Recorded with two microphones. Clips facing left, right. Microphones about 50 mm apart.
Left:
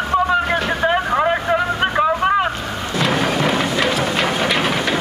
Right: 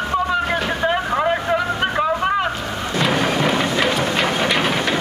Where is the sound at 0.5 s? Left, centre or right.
Centre.